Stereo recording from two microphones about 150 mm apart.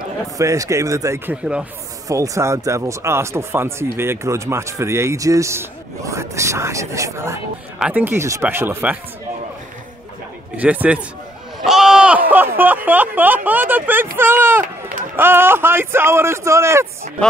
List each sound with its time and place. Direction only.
0.4 s speech: 20° right (ahead or behind)
1.3 s a man's voice: 5° right (ahead or behind)
2.0 s a man's voice: 20° right (ahead or behind)
10.6 s a man's voice: 10° right (ahead or behind)
11.6 s a sound: 5° right (ahead or behind)
12.3 s a man's voice: 15° right (ahead or behind)